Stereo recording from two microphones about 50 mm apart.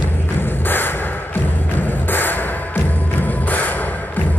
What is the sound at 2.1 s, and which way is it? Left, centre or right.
Music, left.